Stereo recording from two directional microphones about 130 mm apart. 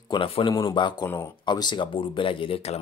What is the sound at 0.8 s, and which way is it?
Speech, 35° left (ahead or behind).